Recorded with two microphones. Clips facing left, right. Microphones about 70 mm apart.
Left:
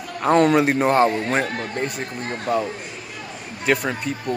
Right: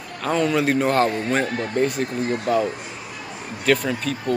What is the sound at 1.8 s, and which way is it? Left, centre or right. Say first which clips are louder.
Speech: right 9 dB; centre.